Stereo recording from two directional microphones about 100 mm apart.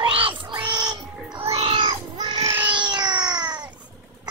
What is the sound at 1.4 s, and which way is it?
Child singing, 65° right (ahead or behind).